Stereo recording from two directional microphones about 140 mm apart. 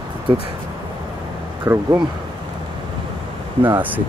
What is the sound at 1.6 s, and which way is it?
Speech, 20° right (ahead or behind).